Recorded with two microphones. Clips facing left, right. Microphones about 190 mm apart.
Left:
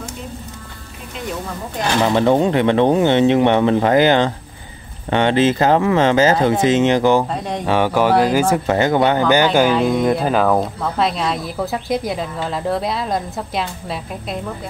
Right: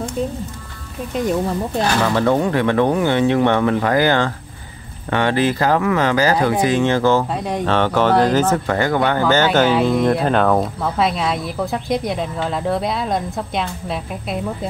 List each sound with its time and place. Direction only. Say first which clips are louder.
2.0 s speech: left 6 dB; 20° left (ahead or behind)
8.6 s speech: left 3 dB; 20° left (ahead or behind); by 14.4 s centre (ahead or behind)